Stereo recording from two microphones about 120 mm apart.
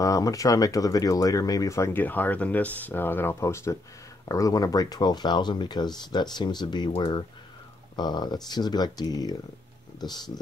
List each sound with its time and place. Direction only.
0.0 s speech: 30° left (ahead or behind)
7.0 s speech: 50° left (ahead or behind)
7.9 s speech: 35° left (ahead or behind)